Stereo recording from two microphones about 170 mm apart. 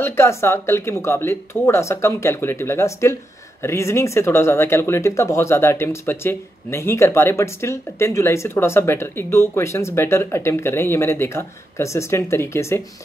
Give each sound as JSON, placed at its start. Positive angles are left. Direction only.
{"t": 0.0, "sound": "speech", "side_deg": 15}